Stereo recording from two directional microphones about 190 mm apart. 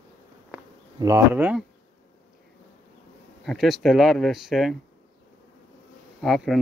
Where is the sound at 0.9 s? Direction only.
15° right (ahead or behind).